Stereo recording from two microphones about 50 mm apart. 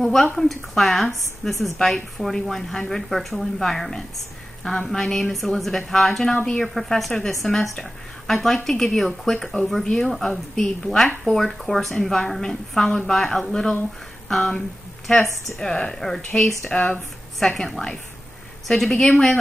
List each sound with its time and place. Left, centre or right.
0.0 s a sound: centre
0.4 s a woman's voice: centre
6.3 s speech: centre
6.6 s a woman's voice: centre
15.6 s speech: centre